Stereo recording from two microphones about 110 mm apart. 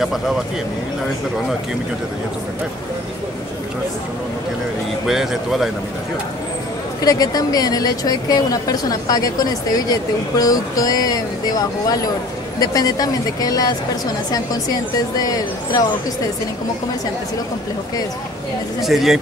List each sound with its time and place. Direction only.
5.0 s speech: 5° right (ahead or behind)
7.0 s a woman's voice: 35° left (ahead or behind)
18.8 s speech: 5° right (ahead or behind)